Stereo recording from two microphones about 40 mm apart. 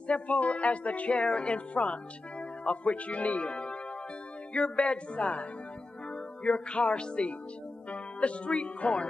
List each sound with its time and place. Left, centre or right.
0.0 s speech: left